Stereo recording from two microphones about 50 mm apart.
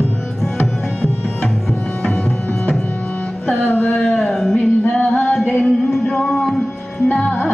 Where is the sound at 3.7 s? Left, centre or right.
Left.